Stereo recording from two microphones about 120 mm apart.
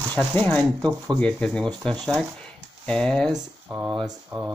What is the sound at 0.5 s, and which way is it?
Speech, 10° left (ahead or behind).